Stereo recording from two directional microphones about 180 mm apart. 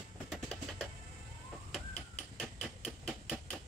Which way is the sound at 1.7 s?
5° left (ahead or behind).